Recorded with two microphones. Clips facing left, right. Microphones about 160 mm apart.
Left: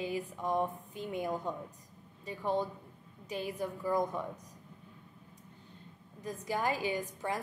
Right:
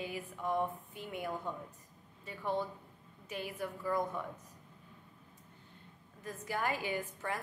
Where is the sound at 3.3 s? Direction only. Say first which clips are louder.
Left 4 dB; 15° left (ahead or behind).